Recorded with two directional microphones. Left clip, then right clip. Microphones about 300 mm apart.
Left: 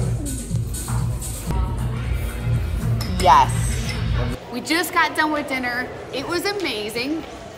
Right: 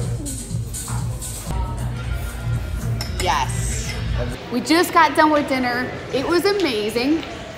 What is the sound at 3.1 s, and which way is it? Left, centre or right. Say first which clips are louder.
Music: left 7 dB; centre.